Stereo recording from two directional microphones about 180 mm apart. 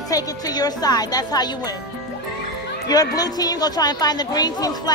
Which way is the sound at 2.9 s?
20° left (ahead or behind).